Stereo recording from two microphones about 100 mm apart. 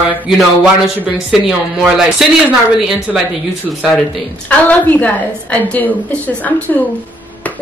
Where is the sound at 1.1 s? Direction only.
5° right (ahead or behind).